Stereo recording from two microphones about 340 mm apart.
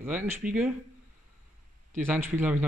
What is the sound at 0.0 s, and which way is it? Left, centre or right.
Speech, centre.